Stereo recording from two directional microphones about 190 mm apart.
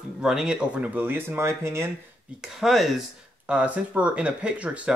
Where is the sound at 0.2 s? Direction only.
Centre (ahead or behind).